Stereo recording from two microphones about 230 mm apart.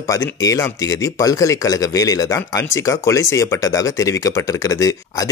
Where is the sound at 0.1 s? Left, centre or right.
Centre.